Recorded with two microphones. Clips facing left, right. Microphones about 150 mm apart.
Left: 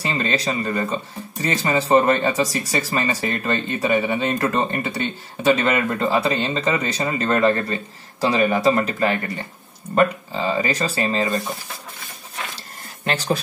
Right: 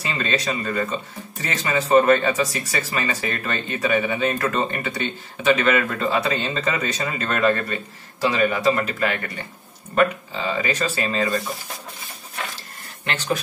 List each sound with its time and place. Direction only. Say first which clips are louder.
0.0 s speech: left 2 dB; 30° left (ahead or behind)
13.0 s speech: left 3 dB; 35° left (ahead or behind)